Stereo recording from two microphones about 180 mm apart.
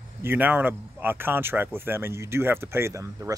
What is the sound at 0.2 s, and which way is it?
Speech, 10° right (ahead or behind).